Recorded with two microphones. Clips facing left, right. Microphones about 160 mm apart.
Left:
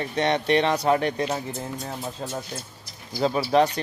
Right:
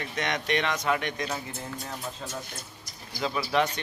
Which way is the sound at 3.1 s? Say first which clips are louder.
Left 7 dB; 35° left (ahead or behind).